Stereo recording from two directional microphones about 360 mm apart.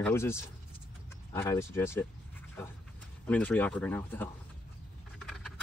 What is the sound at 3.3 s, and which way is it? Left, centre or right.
Speech, centre.